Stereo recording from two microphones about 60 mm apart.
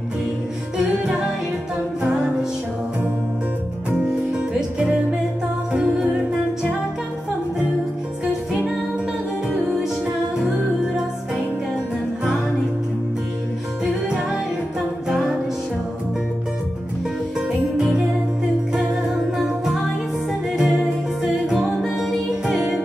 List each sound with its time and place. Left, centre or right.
4.1 s music: centre
19.3 s music: centre
21.5 s music: centre
22.5 s music: centre